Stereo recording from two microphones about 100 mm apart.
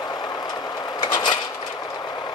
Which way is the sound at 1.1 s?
45° left (ahead or behind).